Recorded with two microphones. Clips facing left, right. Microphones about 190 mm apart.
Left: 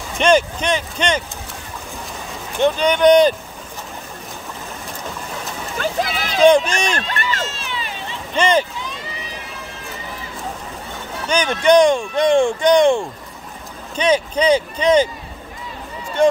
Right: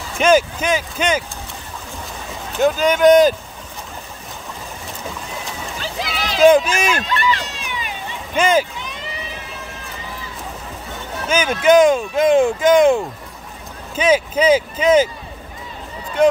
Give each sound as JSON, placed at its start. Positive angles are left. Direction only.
{"t": 0.2, "sound": "speech", "side_deg": -5}
{"t": 2.6, "sound": "speech", "side_deg": -5}
{"t": 5.8, "sound": "a sound", "side_deg": 50}
{"t": 6.3, "sound": "speech", "side_deg": -5}
{"t": 7.1, "sound": "speech", "side_deg": 45}
{"t": 7.4, "sound": "run", "side_deg": -15}
{"t": 8.4, "sound": "speech", "side_deg": -5}
{"t": 11.2, "sound": "speech", "side_deg": -5}